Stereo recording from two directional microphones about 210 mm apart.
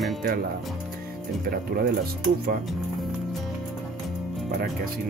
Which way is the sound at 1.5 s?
45° right (ahead or behind).